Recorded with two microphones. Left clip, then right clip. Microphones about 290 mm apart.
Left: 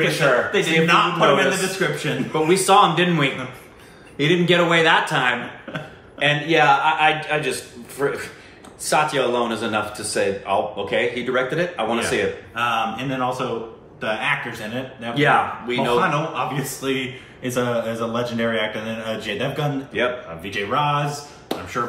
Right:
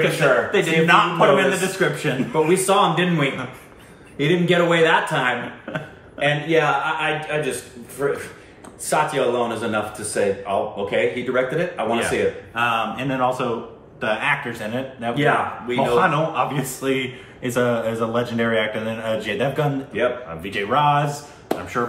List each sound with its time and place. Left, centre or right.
0.0 s speech: centre